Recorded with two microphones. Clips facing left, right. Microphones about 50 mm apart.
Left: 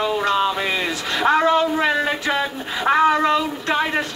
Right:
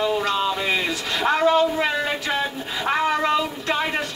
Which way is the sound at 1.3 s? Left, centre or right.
Left.